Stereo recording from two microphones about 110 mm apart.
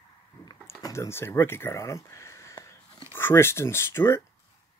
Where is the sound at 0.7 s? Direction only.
25° left (ahead or behind).